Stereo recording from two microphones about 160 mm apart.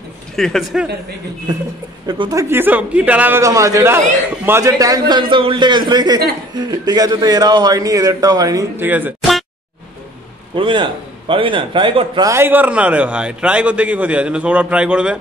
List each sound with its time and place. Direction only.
0.4 s speech: centre (ahead or behind)
2.0 s a man's voice: 25° right (ahead or behind)
10.5 s a man's voice: 30° right (ahead or behind)
12.3 s a man's voice: 15° right (ahead or behind)